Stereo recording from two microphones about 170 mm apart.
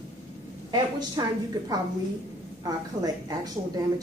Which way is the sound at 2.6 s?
20° right (ahead or behind).